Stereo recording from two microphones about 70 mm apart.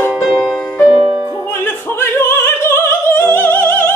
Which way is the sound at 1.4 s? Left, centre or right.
Left.